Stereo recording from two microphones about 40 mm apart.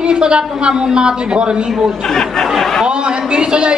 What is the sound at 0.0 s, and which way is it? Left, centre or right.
A woman's voice, right.